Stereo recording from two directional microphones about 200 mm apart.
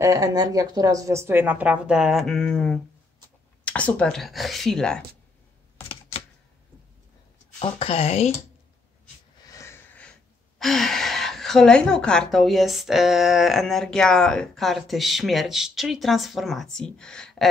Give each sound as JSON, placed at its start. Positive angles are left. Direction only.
{"t": 0.0, "sound": "a woman's voice", "side_deg": -20}
{"t": 7.5, "sound": "a woman's voice", "side_deg": 30}
{"t": 9.5, "sound": "wheeze", "side_deg": 15}
{"t": 10.6, "sound": "a woman's voice", "side_deg": 0}